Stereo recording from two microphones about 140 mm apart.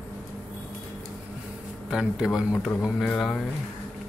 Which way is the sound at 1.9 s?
5° right (ahead or behind).